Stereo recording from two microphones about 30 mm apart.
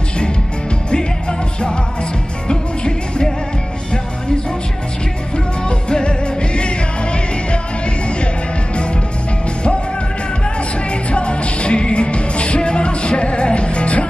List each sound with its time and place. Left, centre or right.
2.4 s music: left
5.7 s music: left
10.9 s music: left